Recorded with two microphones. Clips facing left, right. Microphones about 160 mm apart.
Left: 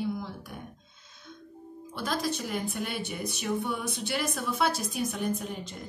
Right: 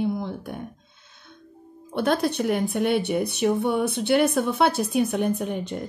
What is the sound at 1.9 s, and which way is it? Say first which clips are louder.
Speech: right 9 dB; 60° right (ahead or behind).